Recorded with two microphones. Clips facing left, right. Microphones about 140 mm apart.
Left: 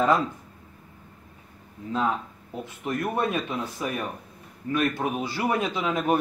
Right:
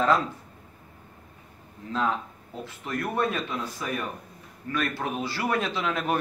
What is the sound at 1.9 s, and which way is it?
Speech, 10° left (ahead or behind).